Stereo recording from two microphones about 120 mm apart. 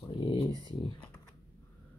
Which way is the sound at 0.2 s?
50° left (ahead or behind).